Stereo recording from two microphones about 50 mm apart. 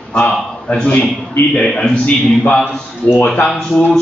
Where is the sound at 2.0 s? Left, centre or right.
Left.